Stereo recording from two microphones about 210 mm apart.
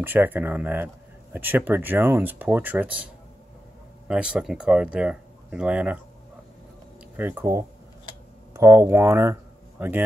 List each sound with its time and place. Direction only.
0.0 s speech: 10° right (ahead or behind)
4.1 s speech: 5° right (ahead or behind)
7.2 s speech: 10° right (ahead or behind)